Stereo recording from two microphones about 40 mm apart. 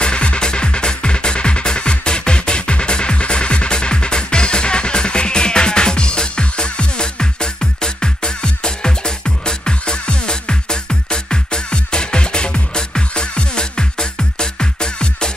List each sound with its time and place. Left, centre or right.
0.0 s music: left